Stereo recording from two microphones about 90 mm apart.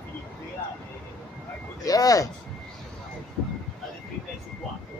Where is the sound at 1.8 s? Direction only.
40° left (ahead or behind).